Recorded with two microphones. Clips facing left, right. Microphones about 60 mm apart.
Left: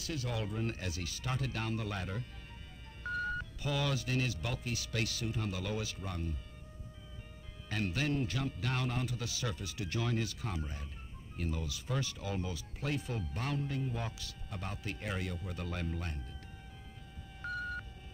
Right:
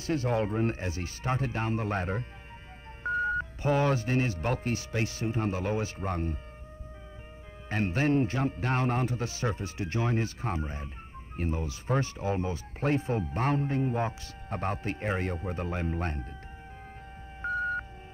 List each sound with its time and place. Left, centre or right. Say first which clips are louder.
0.0 s speech: right 10 dB; right
7.7 s speech: right 8 dB; right
17.4 s sonar: right 9 dB; right